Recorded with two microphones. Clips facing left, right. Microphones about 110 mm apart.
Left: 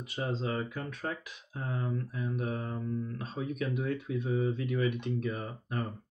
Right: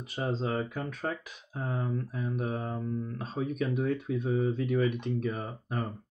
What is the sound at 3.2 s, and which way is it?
Speech, 40° right (ahead or behind).